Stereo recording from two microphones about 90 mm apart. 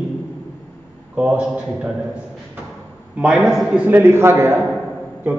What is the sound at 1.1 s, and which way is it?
Speech, 10° right (ahead or behind).